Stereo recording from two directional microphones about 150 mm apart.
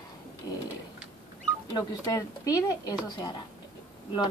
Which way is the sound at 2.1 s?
20° left (ahead or behind).